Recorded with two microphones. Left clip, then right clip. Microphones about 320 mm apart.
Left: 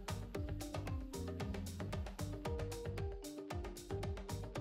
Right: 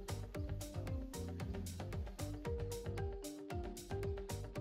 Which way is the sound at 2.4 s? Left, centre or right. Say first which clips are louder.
Even; centre.